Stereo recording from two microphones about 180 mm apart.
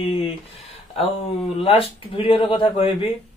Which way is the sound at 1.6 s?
30° left (ahead or behind).